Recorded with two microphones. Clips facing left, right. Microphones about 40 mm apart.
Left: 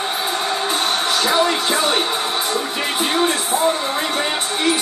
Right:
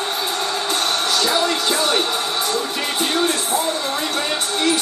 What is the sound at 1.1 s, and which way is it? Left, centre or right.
Music, left.